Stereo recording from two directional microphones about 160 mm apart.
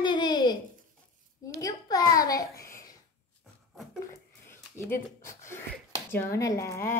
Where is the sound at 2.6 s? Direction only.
20° left (ahead or behind).